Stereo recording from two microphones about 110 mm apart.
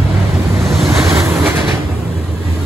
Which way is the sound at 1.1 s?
25° right (ahead or behind).